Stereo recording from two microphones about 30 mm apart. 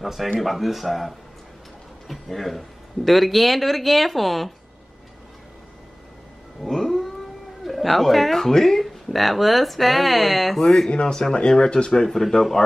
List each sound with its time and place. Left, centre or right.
0.0 s speech: centre
6.6 s cat: centre
7.6 s a man's voice: centre
11.2 s speech: left
12.1 s speech: centre